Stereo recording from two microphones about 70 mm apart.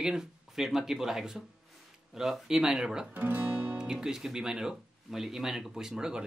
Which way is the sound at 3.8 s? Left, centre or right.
Centre.